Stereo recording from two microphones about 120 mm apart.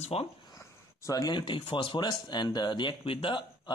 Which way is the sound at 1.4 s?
45° left (ahead or behind).